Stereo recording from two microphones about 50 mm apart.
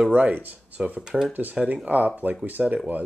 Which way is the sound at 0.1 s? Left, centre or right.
Right.